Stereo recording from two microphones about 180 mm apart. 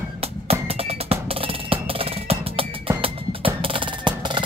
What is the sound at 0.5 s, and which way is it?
Music, 35° right (ahead or behind).